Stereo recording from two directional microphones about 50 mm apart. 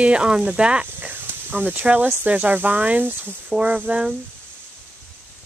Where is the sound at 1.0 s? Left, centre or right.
Right.